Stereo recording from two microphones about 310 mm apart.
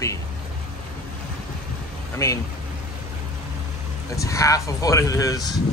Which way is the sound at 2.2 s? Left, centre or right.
Centre.